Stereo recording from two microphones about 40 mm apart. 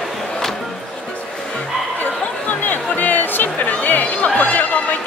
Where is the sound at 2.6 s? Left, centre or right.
Left.